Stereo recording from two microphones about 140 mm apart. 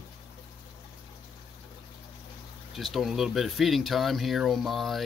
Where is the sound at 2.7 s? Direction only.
Centre (ahead or behind).